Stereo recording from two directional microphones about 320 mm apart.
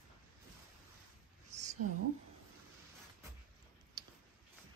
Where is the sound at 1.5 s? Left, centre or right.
Right.